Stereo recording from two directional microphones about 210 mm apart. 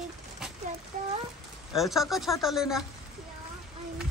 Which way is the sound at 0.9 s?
40° right (ahead or behind).